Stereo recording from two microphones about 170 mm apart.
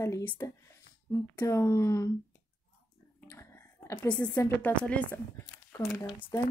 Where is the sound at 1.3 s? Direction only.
15° left (ahead or behind).